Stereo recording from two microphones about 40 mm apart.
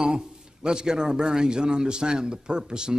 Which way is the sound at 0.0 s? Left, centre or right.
Right.